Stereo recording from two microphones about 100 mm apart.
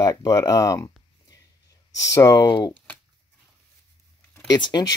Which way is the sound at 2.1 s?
35° left (ahead or behind).